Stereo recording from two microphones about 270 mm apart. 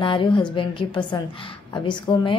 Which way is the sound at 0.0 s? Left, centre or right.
Centre.